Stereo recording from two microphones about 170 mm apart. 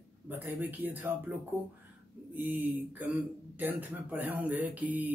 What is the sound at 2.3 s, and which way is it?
Speech, 10° right (ahead or behind).